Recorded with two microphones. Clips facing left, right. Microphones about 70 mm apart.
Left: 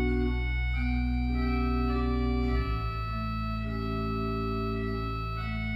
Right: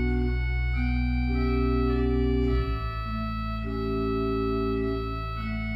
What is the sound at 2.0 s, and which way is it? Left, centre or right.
Organ, left.